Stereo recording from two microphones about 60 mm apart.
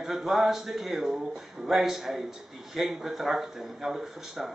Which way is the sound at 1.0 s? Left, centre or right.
Centre.